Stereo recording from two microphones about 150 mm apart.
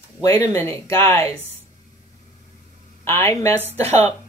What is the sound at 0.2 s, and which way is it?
Speech, 20° left (ahead or behind).